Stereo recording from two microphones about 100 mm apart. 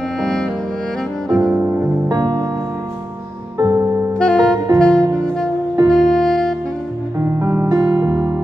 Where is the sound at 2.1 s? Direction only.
40° right (ahead or behind).